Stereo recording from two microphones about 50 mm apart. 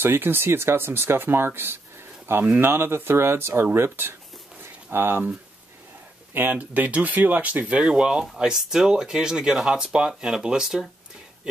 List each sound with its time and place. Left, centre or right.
0.0 s speech: right
6.3 s speech: right
6.6 s speech: right
7.8 s speech: centre